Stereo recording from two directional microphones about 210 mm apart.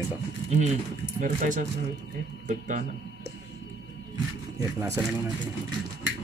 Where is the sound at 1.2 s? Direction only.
40° right (ahead or behind).